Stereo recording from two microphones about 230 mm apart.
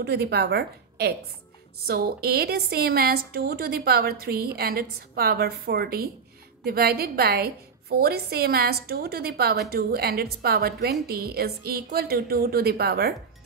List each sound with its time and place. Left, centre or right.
0.0 s a woman's voice: right